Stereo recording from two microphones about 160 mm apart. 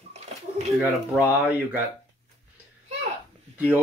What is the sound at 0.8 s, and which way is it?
Speech, 10° right (ahead or behind).